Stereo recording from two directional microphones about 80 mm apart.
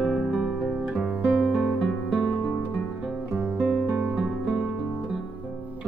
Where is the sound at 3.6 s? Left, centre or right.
Centre.